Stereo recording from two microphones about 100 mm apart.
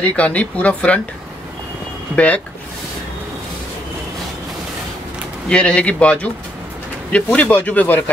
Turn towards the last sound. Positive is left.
turn(degrees=15)  # may be behind; listen again after turning